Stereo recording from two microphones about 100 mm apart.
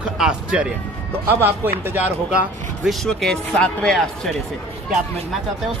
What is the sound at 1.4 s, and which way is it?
Speech, 20° right (ahead or behind).